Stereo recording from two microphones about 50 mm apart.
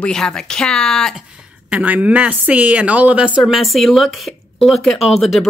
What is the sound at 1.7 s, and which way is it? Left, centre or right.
A woman's voice, right.